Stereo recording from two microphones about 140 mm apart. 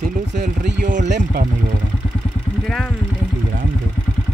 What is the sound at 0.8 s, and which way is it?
Speech, 65° right (ahead or behind).